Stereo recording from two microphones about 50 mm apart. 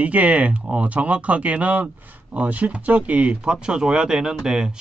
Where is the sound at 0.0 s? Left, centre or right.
Right.